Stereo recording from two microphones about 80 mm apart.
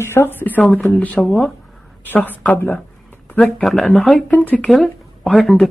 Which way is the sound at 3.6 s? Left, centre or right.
Centre.